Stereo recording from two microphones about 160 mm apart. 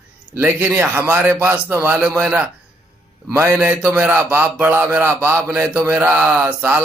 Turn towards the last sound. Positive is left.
turn(degrees=-10)  # may be behind; listen again after turning